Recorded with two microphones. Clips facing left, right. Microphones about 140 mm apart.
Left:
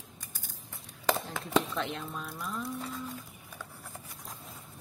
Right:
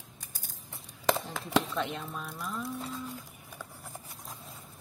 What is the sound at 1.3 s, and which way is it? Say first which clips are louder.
Speech: even; centre (ahead or behind).